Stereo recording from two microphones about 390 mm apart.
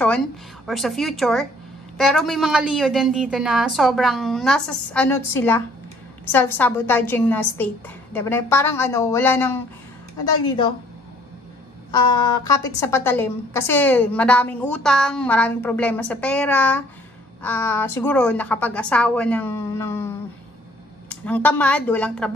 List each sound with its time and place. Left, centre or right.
0.7 s a woman's voice: centre
12.1 s a woman's voice: centre
21.1 s a woman's voice: centre